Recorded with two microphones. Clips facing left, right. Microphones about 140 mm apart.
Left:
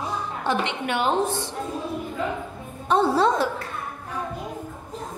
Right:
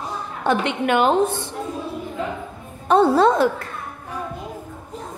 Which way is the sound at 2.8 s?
55° right (ahead or behind).